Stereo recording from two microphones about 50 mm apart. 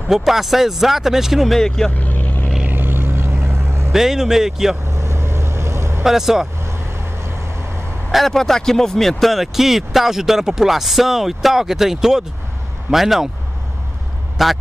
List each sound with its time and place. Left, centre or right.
0.1 s speech: centre
1.5 s speech: centre
1.9 s vehicle: left
2.7 s vehicle: right
3.9 s speech: centre
4.9 s vehicle: right
6.0 s speech: centre
8.1 s speech: centre
14.4 s speech: centre